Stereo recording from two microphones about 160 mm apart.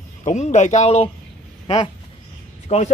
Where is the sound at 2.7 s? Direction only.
40° left (ahead or behind).